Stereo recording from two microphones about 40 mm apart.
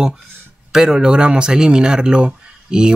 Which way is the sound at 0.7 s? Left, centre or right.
Centre.